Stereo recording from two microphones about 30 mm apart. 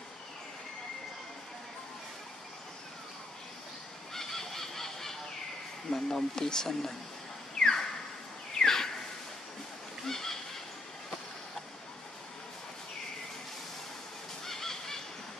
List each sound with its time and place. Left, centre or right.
4.1 s goose: centre
5.9 s speech: centre
7.5 s a sound: centre
10.0 s neigh: centre
14.4 s honk: centre